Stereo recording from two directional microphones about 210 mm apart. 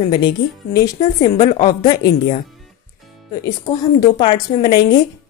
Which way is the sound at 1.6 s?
20° left (ahead or behind).